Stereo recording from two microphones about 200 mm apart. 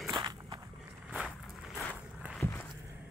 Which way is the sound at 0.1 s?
25° right (ahead or behind).